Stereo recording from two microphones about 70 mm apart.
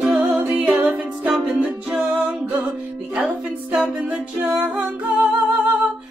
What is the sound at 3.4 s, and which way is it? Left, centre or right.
A capella, right.